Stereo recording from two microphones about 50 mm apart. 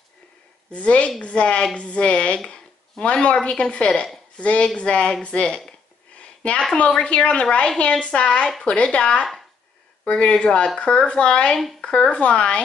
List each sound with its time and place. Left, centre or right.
0.7 s a woman's voice: left
5.7 s a sound: left
7.0 s a woman's voice: left